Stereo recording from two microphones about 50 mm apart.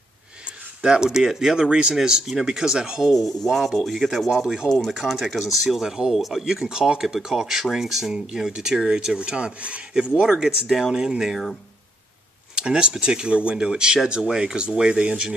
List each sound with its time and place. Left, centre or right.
0.8 s speech: centre
3.0 s speech: centre
4.6 s speech: centre
5.1 s speech: centre
12.5 s speech: centre